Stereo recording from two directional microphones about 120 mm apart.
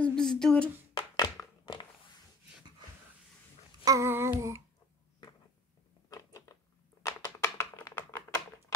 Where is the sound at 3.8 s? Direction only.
25° right (ahead or behind).